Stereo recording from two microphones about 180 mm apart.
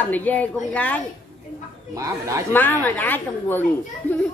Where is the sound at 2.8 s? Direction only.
10° left (ahead or behind).